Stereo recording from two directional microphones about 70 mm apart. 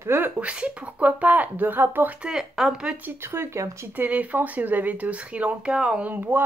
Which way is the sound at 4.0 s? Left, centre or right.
Right.